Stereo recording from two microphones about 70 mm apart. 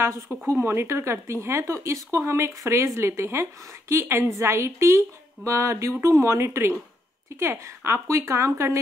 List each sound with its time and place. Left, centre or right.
0.6 s a woman's voice: right